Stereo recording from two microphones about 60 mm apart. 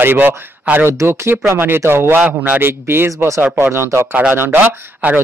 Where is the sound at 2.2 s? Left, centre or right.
Right.